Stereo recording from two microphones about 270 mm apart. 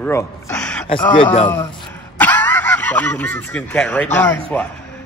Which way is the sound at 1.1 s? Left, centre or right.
Left.